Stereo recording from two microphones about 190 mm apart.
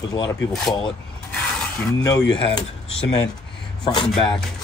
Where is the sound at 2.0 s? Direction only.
20° left (ahead or behind).